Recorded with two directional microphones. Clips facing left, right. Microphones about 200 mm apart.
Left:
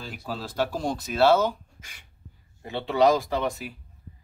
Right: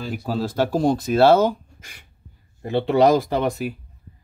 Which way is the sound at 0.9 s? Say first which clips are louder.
Right 11 dB; 50° right (ahead or behind).